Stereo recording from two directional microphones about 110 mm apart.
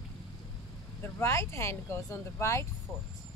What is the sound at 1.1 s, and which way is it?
Speech, 25° left (ahead or behind).